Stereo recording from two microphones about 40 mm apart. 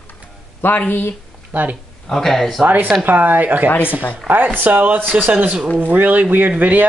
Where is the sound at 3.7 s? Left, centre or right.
Left.